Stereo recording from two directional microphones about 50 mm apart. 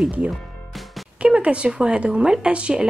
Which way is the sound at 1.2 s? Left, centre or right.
Right.